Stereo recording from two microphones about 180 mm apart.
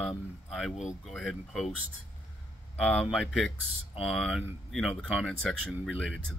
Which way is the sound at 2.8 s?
Centre (ahead or behind).